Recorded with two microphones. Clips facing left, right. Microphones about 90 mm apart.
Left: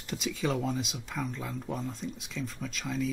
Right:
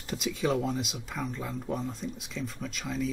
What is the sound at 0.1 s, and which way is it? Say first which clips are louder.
Speech: right 2 dB; centre (ahead or behind).